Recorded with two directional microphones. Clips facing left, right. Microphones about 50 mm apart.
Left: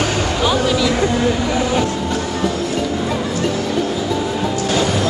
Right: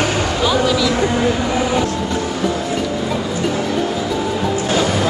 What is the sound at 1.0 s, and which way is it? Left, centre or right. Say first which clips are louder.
Train: even; centre.